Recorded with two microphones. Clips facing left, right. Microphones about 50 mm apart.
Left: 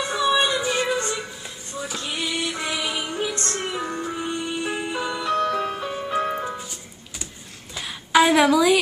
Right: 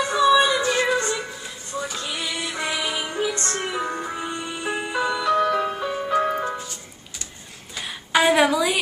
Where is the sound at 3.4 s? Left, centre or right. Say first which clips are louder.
Right 1 dB; right.